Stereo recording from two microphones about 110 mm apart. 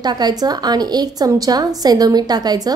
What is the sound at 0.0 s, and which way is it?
A woman's voice, 40° right (ahead or behind).